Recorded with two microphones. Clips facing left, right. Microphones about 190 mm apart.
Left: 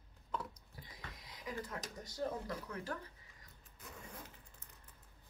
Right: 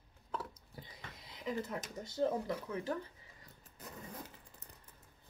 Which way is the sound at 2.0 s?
25° right (ahead or behind).